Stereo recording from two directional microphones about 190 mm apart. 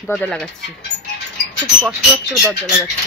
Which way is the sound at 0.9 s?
70° left (ahead or behind).